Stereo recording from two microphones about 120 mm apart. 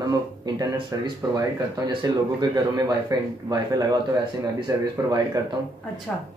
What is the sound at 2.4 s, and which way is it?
Speech, 40° right (ahead or behind).